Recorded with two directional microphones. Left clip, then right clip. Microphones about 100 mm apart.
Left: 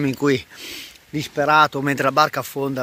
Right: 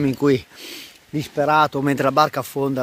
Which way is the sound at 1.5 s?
15° right (ahead or behind).